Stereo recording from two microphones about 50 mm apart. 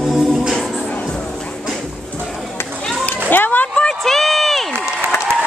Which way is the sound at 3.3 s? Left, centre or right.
Left.